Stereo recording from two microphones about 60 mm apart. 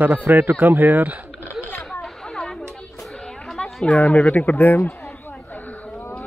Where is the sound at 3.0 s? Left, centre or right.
Centre.